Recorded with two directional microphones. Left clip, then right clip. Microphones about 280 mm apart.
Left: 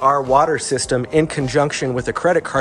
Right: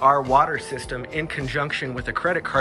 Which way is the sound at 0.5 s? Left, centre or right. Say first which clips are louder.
Left 9 dB; left.